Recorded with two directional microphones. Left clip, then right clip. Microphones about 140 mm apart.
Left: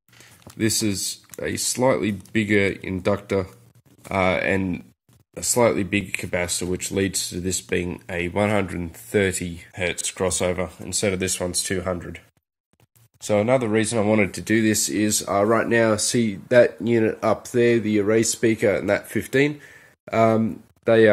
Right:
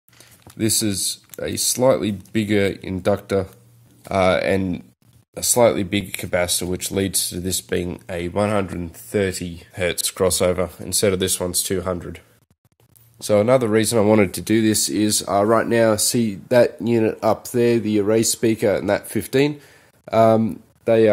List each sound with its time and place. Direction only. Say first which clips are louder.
0.6 s speech: right 1 dB; 30° right (ahead or behind)
8.3 s speech: right 2 dB; 5° right (ahead or behind)
9.8 s speech: right 4 dB; 40° right (ahead or behind)
11.2 s speech: right 2 dB; 25° right (ahead or behind)
13.2 s speech: right 4 dB; 40° right (ahead or behind)
14.3 s speech: right 2 dB; 30° right (ahead or behind)
20.2 s speech: right 4 dB; 10° right (ahead or behind)